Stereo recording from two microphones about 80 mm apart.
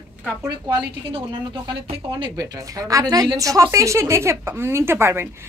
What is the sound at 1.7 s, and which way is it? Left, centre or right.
Speech, right.